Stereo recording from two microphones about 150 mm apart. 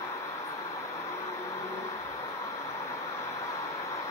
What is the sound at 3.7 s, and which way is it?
Vehicle, 20° left (ahead or behind).